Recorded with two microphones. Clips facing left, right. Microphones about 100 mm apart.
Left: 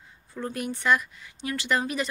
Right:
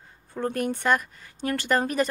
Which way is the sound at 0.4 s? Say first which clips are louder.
Right 4 dB; 50° right (ahead or behind).